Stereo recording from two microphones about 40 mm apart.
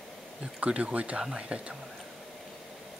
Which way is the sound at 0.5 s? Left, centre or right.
Right.